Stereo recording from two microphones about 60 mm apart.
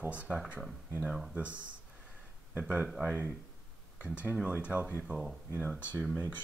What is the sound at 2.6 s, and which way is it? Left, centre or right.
Speech, right.